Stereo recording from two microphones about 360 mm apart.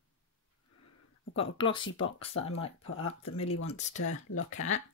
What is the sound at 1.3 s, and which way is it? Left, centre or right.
Speech, centre.